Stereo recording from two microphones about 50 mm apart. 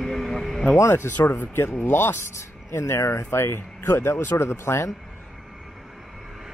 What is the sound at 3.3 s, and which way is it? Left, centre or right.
Speech, left.